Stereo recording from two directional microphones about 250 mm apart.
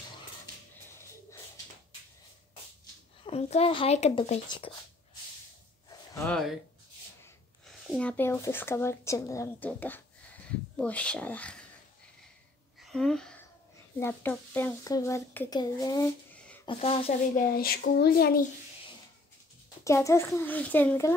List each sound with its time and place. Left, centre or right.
3.3 s speech: left
5.9 s a sound: centre
7.6 s speech: centre
12.9 s speech: centre; by 17.1 s left
17.6 s speech: left
19.8 s speech: centre